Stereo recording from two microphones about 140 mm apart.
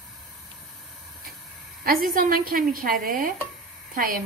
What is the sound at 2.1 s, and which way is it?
A woman's voice, 85° right.